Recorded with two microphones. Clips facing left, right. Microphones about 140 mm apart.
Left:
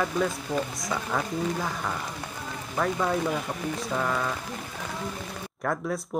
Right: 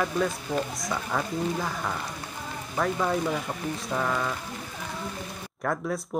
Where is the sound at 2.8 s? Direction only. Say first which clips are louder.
Even; centre (ahead or behind).